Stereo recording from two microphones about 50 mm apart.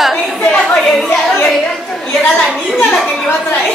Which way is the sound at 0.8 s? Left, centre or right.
Centre.